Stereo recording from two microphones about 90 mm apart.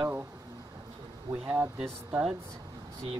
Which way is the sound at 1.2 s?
25° right (ahead or behind).